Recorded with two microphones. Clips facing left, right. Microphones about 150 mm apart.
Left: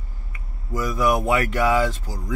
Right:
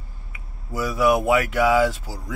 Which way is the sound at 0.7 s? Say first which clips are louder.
Right 2 dB; 5° right (ahead or behind).